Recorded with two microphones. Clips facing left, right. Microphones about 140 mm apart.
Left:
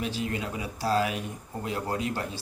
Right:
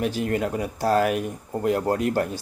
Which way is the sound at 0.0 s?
55° right (ahead or behind).